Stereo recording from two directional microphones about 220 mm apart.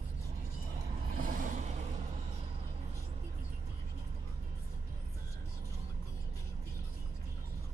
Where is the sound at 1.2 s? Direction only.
40° right (ahead or behind).